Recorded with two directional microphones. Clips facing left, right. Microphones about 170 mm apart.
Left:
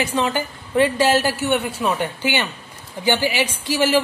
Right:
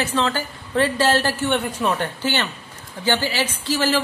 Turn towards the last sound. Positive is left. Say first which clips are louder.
# left 3 dB
turn(degrees=10)  # may be behind; listen again after turning